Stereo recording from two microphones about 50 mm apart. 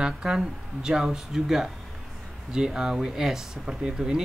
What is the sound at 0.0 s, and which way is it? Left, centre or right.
Speech, centre.